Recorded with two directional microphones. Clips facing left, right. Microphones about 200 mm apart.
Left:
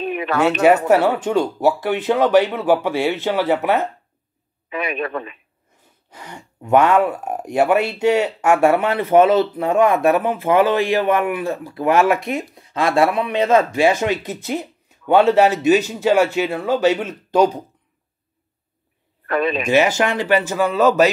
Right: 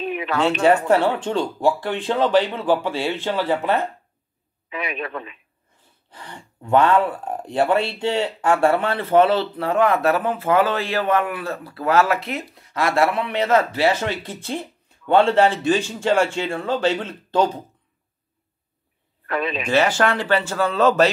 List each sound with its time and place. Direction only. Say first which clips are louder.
0.0 s speech: left 3 dB; 50° left (ahead or behind)
0.8 s a man's voice: left 3 dB; 10° left (ahead or behind)
4.6 s a man's voice: left 5 dB; 50° left (ahead or behind)
6.1 s a man's voice: left 2 dB; 10° left (ahead or behind)
9.2 s a man's voice: left 4 dB; 20° left (ahead or behind)
14.4 s a man's voice: left 4 dB; 10° left (ahead or behind)
19.2 s a man's voice: left 5 dB; 50° left (ahead or behind)
19.7 s a man's voice: left 1 dB; 10° left (ahead or behind)